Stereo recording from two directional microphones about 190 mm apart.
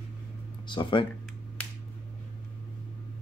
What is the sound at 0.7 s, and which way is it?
Speech, 25° left (ahead or behind).